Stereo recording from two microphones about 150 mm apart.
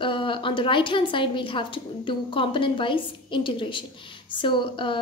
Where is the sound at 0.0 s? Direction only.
35° left (ahead or behind).